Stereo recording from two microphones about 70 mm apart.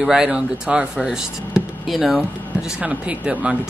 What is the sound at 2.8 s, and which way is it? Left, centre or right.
Speech, centre.